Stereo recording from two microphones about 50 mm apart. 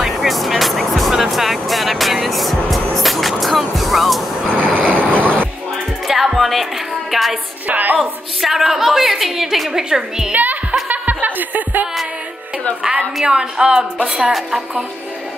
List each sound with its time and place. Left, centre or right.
0.0 s music: centre
4.5 s vehicle: right
5.1 s music: left
6.0 s music: centre
7.6 s music: right
8.0 s a sound: centre
10.3 s music: right
12.8 s a sound: centre
13.9 s a woman's voice: right